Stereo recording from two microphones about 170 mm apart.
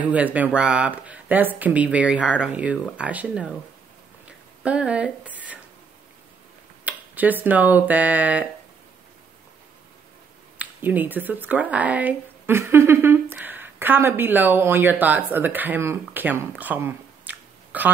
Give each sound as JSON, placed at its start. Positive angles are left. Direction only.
{"t": 0.1, "sound": "speech", "side_deg": -10}
{"t": 4.3, "sound": "a sound", "side_deg": -5}
{"t": 6.8, "sound": "speech", "side_deg": -10}
{"t": 10.6, "sound": "speech", "side_deg": -10}